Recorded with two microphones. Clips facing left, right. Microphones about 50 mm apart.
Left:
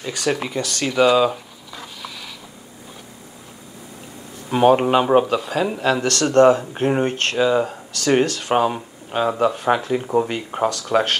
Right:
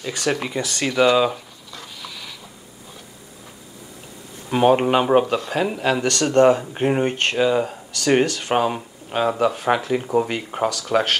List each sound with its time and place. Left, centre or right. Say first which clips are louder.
0.0 s speech: left 1 dB; centre
0.8 s speech: left 1 dB; centre
1.3 s a sound: left 1 dB; centre
4.5 s speech: left 1 dB; centre
5.8 s speech: left 1 dB; centre
6.8 s speech: left 1 dB; centre
7.1 s speech: even; right
7.3 s speech: left 3 dB; centre